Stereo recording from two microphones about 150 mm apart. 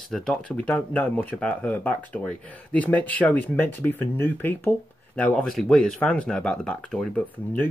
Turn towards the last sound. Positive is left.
turn(degrees=10)  # may be behind; listen again after turning